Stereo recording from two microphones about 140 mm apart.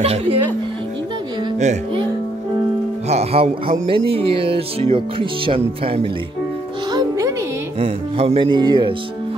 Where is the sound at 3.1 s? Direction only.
50° right (ahead or behind).